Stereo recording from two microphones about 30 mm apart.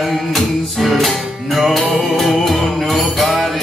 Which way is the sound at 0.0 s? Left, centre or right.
Centre.